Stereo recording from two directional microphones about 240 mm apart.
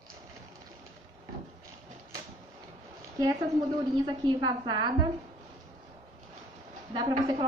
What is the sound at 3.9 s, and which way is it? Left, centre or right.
A woman's voice, centre.